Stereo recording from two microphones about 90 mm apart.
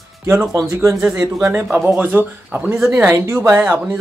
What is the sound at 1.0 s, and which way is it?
Speech, 15° right (ahead or behind).